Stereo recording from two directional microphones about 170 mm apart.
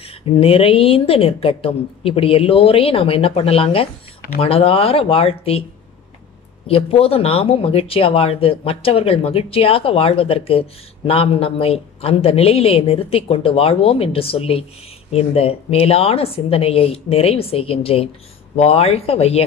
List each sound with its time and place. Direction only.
0.0 s speech: 35° left (ahead or behind)
6.7 s speech: 35° left (ahead or behind)